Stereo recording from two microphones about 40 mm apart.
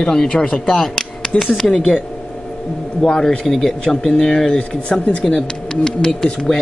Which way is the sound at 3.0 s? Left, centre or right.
Centre.